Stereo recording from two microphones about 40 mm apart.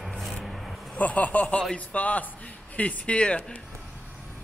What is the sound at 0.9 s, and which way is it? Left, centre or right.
Speech, left.